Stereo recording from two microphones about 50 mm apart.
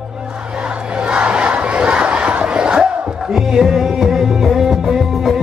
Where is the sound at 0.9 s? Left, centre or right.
Centre.